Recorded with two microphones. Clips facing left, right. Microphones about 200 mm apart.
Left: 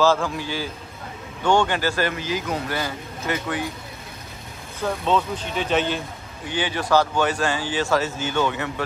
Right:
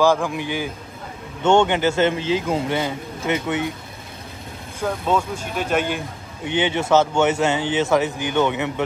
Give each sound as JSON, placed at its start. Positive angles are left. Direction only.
{"t": 0.0, "sound": "a man's voice", "side_deg": -15}
{"t": 4.8, "sound": "speech", "side_deg": -10}